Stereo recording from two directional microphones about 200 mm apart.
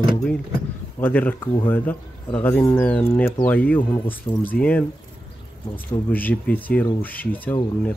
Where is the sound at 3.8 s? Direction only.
25° left (ahead or behind).